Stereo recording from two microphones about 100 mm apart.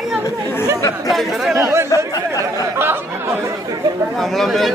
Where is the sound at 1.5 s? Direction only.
25° right (ahead or behind).